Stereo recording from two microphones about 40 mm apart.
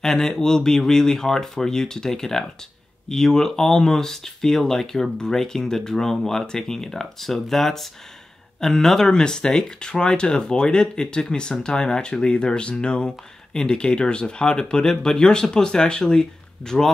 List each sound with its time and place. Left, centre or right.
0.0 s speech: centre
9.1 s speech: centre